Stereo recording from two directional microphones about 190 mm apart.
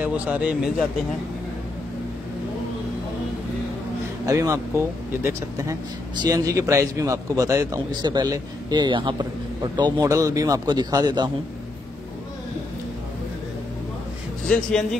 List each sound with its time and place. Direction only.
0.0 s speech: 5° right (ahead or behind)
4.3 s speech: 15° right (ahead or behind)
14.4 s speech: 5° left (ahead or behind)